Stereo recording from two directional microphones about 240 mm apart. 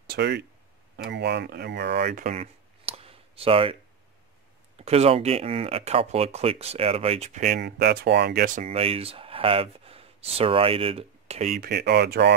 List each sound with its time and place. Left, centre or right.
0.0 s speech: right
4.7 s speech: right
8.6 s speech: right